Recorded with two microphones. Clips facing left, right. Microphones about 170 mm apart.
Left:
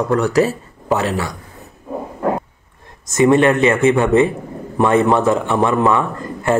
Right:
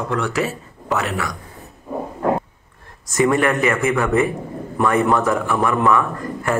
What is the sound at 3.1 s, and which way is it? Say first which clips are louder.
A man's voice: left 5 dB; 25° left (ahead or behind).